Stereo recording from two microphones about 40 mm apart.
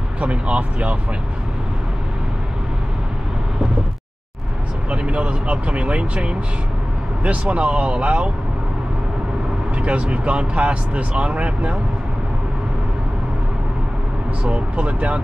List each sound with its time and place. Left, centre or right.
0.2 s speech: right
4.8 s speech: right
7.4 s speech: right
9.8 s speech: right
14.4 s speech: right